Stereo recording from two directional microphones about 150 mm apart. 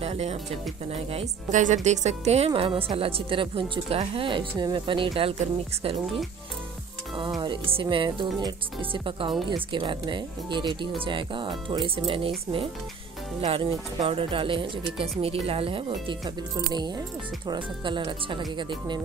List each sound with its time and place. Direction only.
0.0 s music: 45° right (ahead or behind)
1.1 s speech: 50° right (ahead or behind); by 5.3 s 35° right (ahead or behind)
7.7 s speech: 35° right (ahead or behind)